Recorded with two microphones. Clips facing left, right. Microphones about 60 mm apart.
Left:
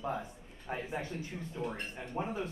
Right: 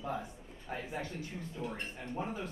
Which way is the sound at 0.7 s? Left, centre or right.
Left.